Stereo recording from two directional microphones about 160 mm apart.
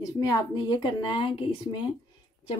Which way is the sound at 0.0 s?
25° left (ahead or behind).